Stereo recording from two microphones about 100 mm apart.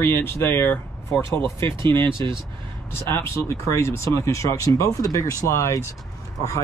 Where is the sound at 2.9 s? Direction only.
25° left (ahead or behind).